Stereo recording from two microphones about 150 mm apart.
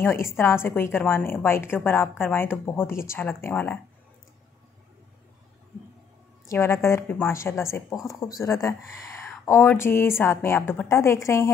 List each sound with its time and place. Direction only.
0.0 s a woman's voice: 15° left (ahead or behind)
6.4 s a woman's voice: 20° left (ahead or behind)